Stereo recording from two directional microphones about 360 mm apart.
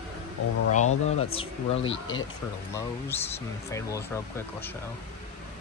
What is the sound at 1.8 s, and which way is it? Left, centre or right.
Speech, left.